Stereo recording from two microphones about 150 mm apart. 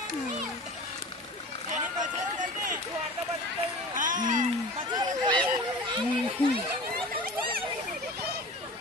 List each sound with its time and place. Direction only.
2.0 s run: 60° right (ahead or behind)
3.9 s music: 60° right (ahead or behind)
4.9 s a sound: 30° right (ahead or behind)